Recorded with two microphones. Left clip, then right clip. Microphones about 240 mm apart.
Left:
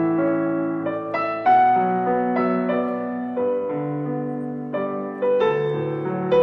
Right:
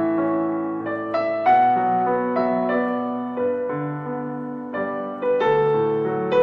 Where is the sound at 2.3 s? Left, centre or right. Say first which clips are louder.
Right 1 dB; left.